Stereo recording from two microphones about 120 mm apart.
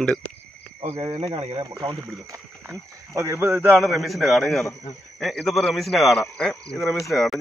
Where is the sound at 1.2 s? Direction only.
50° right (ahead or behind).